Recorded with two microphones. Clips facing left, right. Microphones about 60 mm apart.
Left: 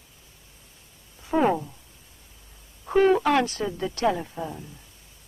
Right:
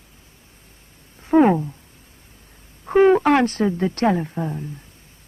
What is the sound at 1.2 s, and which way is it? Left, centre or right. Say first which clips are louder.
Speech: right 7 dB; right.